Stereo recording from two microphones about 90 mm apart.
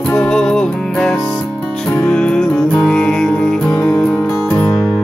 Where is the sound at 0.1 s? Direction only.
10° left (ahead or behind).